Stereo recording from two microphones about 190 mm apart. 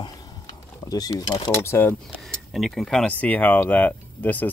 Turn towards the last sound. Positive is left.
turn(degrees=10)  # may be behind; listen again after turning